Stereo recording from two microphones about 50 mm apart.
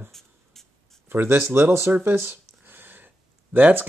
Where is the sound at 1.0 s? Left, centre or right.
Right.